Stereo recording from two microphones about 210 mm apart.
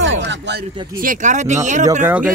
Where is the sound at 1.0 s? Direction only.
40° right (ahead or behind).